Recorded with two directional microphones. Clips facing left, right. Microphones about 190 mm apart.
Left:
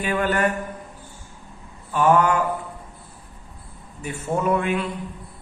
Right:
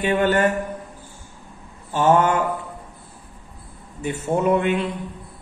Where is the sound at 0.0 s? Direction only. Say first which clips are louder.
Right 3 dB; 25° right (ahead or behind).